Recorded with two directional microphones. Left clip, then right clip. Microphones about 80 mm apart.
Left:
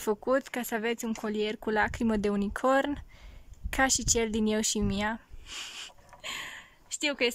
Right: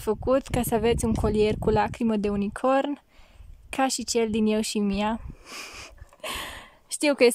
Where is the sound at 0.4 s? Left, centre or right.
Right.